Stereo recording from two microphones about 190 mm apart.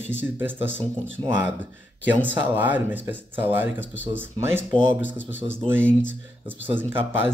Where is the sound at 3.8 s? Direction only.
75° left (ahead or behind).